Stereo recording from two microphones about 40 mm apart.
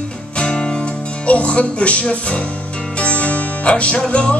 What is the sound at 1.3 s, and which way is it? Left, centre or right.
Music, left.